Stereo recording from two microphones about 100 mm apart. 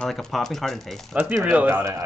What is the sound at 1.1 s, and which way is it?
Speech, 20° right (ahead or behind).